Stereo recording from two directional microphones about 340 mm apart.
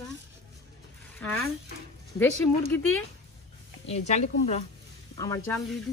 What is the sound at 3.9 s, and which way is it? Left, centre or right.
Speech, centre.